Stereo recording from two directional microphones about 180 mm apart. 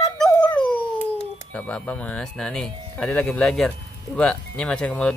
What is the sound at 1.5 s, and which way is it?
Speech, 5° left (ahead or behind).